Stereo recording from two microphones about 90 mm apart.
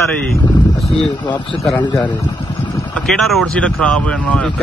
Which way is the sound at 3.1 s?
Centre (ahead or behind).